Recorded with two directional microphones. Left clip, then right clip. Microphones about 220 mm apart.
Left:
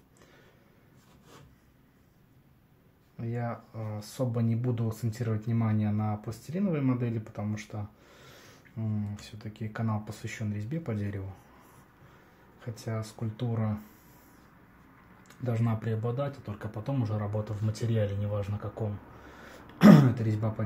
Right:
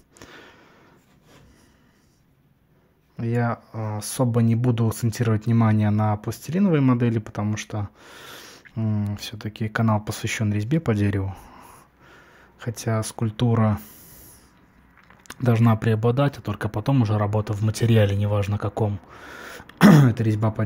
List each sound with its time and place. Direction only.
3.2 s speech: 40° right (ahead or behind)
12.5 s speech: 40° right (ahead or behind)
15.2 s speech: 45° right (ahead or behind)